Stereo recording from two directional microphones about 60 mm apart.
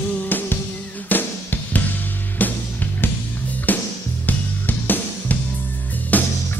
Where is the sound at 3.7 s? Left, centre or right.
Left.